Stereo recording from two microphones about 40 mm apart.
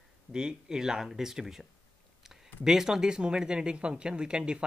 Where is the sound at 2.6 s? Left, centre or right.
Centre.